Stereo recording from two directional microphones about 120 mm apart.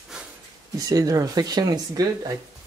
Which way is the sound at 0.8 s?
30° right (ahead or behind).